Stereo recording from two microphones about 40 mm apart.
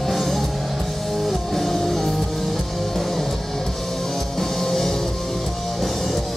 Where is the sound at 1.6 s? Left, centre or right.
Centre.